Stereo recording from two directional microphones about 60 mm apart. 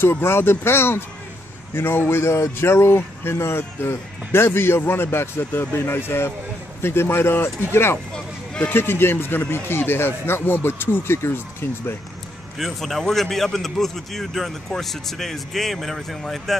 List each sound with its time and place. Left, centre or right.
0.0 s a man's voice: left
12.5 s a man's voice: centre